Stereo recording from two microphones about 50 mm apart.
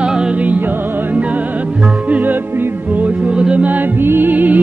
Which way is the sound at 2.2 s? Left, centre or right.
Right.